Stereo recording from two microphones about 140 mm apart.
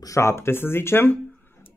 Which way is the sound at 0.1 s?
20° left (ahead or behind).